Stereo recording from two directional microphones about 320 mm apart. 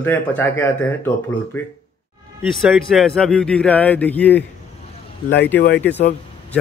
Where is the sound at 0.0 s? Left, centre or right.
Centre.